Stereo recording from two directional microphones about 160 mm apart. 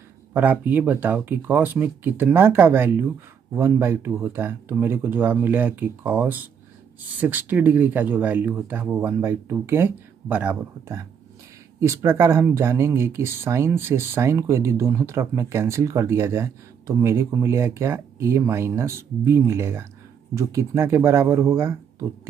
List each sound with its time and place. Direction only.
0.3 s speech: 10° right (ahead or behind)